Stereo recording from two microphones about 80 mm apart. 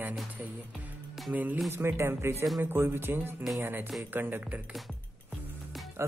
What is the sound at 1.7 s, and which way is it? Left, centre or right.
Speech, right.